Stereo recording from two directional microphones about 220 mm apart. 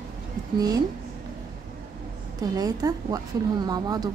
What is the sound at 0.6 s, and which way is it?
Speech, 15° right (ahead or behind).